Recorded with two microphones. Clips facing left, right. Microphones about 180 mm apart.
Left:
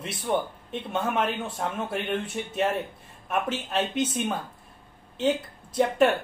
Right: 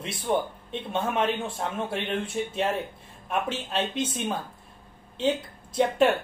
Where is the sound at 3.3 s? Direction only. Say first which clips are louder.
Left 1 dB; centre (ahead or behind).